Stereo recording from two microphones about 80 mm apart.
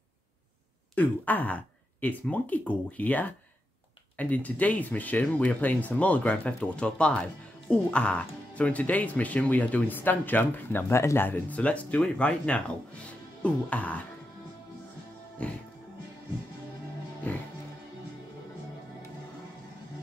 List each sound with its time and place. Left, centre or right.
0.9 s speech: left
15.4 s music: centre
17.3 s speech: left